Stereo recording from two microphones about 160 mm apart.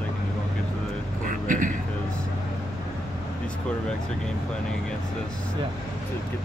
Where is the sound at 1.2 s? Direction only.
55° right (ahead or behind).